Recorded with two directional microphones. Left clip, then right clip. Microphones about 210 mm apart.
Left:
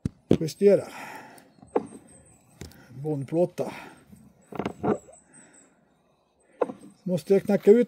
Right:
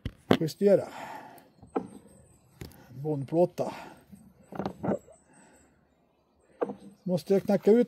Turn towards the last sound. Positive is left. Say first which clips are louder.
# left 4 dB
turn(degrees=0)  # may be behind; listen again after turning